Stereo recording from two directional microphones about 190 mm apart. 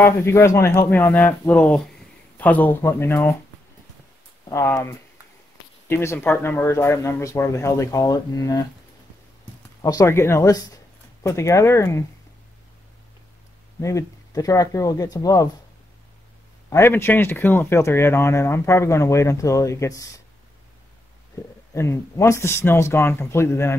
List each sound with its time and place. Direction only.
0.0 s speech: 15° left (ahead or behind)
4.5 s speech: 15° left (ahead or behind)
9.8 s speech: 15° left (ahead or behind)
13.7 s speech: 15° left (ahead or behind)
16.7 s speech: 10° left (ahead or behind)
21.7 s speech: 15° left (ahead or behind)